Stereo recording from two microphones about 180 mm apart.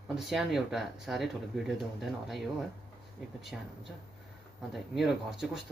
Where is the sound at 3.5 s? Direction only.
Centre (ahead or behind).